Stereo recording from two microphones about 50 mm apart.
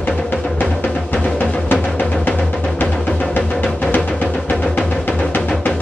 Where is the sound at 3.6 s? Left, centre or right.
Left.